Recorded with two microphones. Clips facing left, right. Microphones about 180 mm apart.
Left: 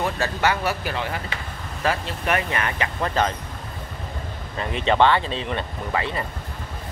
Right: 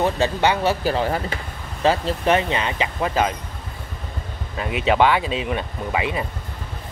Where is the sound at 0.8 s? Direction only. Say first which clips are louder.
Right 7 dB; 35° right (ahead or behind).